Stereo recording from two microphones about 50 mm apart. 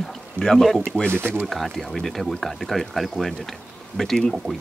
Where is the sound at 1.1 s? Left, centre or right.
Right.